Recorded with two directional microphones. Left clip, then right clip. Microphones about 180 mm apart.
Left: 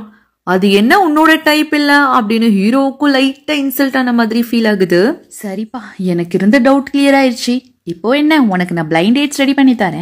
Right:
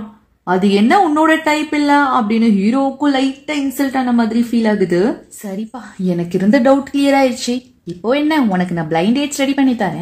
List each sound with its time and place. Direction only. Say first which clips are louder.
0.5 s speech: left 3 dB; 20° left (ahead or behind)